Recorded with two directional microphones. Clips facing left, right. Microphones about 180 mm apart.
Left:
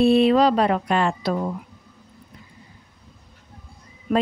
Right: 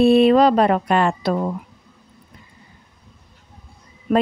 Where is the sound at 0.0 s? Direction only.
55° right (ahead or behind).